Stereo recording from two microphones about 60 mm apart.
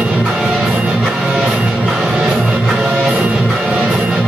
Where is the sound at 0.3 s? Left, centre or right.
Centre.